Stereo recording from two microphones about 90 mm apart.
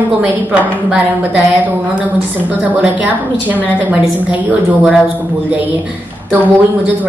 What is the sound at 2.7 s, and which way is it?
A woman's voice, 20° right (ahead or behind).